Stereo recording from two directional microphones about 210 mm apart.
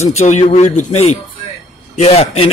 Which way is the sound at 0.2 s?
35° left (ahead or behind).